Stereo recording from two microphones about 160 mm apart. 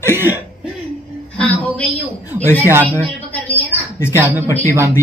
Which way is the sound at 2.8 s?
10° left (ahead or behind).